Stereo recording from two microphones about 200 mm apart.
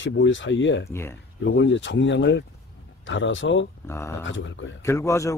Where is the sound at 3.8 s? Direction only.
15° left (ahead or behind).